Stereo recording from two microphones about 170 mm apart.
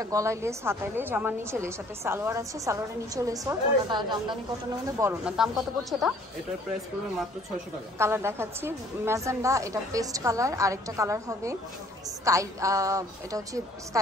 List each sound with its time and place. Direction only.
0.0 s a woman's voice: 20° right (ahead or behind)
5.2 s speech: 5° right (ahead or behind)
8.0 s a woman's voice: 15° right (ahead or behind)